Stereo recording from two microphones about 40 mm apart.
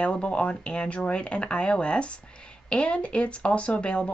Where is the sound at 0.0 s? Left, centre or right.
Left.